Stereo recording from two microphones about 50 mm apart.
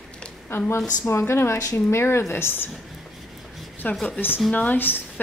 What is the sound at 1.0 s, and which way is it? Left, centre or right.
Speech, left.